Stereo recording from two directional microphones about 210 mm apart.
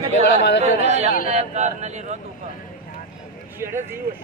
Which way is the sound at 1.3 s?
35° right (ahead or behind).